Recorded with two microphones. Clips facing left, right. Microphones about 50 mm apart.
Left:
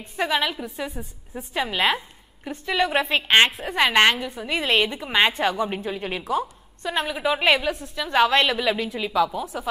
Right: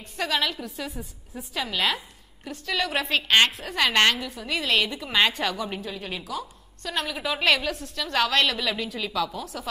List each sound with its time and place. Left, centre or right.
0.2 s a woman's voice: left